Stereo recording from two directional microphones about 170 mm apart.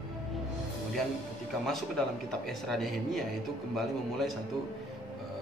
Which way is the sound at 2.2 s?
Centre (ahead or behind).